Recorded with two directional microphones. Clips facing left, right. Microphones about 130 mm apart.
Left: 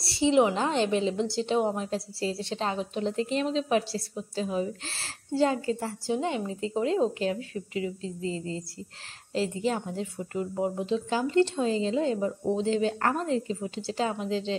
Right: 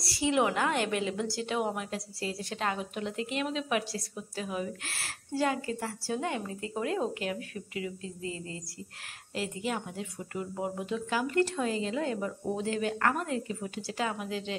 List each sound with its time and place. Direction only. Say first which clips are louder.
0.0 s a woman's voice: left 5 dB; 25° left (ahead or behind)